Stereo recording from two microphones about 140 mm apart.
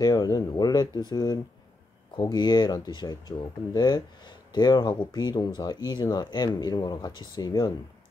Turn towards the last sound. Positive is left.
turn(degrees=30)  # may be behind; listen again after turning